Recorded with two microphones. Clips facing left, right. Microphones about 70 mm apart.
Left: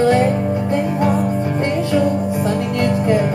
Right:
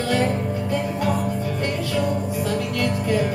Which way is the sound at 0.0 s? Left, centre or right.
Left.